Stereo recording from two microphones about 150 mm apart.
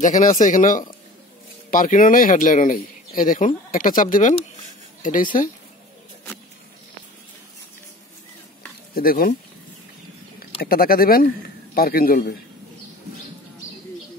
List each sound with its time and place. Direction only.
0.0 s speech: 60° left (ahead or behind)
8.9 s a man's voice: 75° left (ahead or behind)
10.6 s a man's voice: 80° left